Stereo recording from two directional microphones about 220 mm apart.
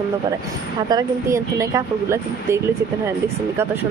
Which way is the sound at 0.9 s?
15° right (ahead or behind).